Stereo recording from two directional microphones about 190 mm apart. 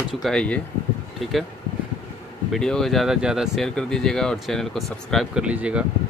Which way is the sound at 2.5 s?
5° left (ahead or behind).